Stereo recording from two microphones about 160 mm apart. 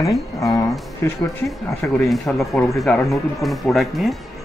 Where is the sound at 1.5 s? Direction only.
Centre (ahead or behind).